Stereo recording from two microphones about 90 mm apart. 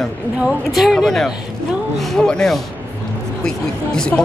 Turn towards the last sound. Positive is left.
turn(degrees=5)  # may be behind; listen again after turning